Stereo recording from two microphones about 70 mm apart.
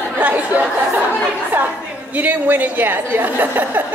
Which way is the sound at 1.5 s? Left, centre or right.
Right.